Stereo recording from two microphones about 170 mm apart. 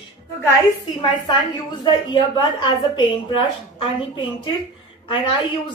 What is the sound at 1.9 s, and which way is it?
Speech, 25° left (ahead or behind).